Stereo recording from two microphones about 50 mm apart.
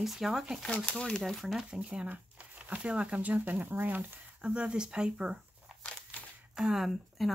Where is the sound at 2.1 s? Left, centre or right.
Right.